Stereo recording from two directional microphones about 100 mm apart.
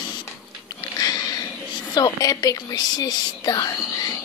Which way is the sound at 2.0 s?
40° left (ahead or behind).